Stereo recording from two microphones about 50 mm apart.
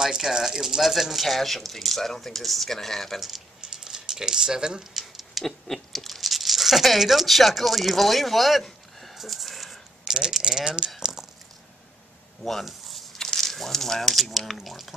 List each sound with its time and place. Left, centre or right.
0.0 s speech: centre
3.2 s a sound: centre
5.0 s patter: centre
10.0 s speech: centre
11.0 s a sound: centre
12.4 s speech: centre